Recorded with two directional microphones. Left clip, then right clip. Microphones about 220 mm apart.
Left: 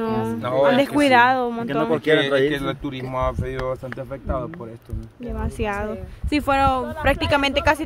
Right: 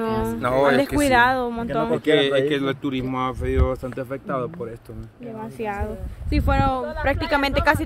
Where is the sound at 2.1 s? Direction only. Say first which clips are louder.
Even; 10° right (ahead or behind).